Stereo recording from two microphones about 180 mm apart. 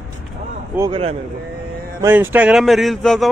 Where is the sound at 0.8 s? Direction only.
30° right (ahead or behind).